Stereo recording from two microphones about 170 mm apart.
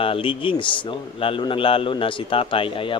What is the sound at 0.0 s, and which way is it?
Speech, 30° left (ahead or behind).